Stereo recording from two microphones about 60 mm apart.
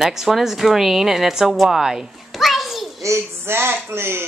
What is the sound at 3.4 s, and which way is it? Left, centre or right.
Speech, right.